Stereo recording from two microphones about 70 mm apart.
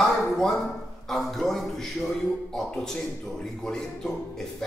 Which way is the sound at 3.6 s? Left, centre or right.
Centre.